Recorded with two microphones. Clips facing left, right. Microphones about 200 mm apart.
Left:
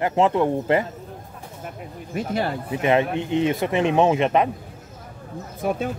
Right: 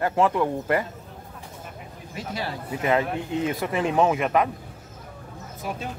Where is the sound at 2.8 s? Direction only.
25° left (ahead or behind).